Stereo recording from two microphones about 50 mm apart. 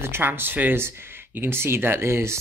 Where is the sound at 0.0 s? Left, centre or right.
Right.